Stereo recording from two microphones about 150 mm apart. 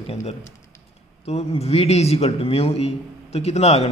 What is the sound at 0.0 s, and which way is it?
A man's voice, 45° left (ahead or behind).